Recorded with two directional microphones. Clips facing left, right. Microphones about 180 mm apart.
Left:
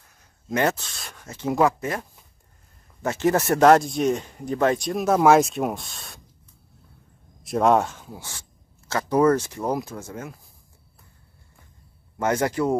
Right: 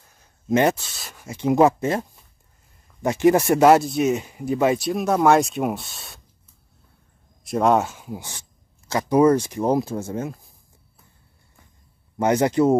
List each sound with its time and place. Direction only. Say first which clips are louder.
0.5 s a man's voice: right 4 dB; 20° right (ahead or behind)
0.7 s speech: even; 5° right (ahead or behind); by 2.0 s 25° right (ahead or behind)
3.0 s speech: right 5 dB; 15° right (ahead or behind)
7.4 s speech: even; centre (ahead or behind); by 10.3 s 25° right (ahead or behind)
12.2 s a man's voice: right 5 dB; 20° right (ahead or behind)